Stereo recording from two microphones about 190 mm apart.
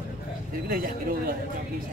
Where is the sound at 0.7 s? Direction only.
50° right (ahead or behind).